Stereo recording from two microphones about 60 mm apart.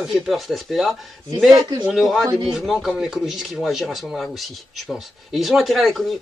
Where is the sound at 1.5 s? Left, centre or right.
Right.